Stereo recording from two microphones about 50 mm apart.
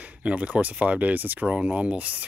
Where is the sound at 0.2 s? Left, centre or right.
Right.